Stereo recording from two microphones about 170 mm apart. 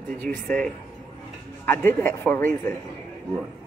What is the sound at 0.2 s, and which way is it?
Speech, 5° left (ahead or behind).